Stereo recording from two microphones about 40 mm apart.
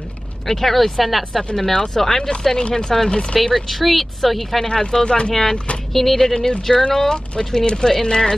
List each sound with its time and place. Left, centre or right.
0.5 s speech: centre
1.6 s speech: centre
3.1 s speech: left
3.3 s speech: centre
4.6 s speech: centre
6.9 s speech: centre
7.3 s speech: left